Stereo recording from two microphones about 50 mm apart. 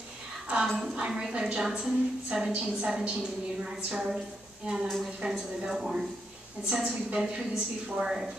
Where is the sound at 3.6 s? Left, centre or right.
Centre.